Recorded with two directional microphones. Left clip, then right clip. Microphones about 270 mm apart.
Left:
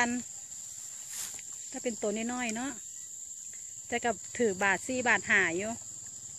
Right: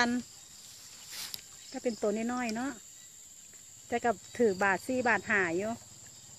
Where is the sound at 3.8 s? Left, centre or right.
Centre.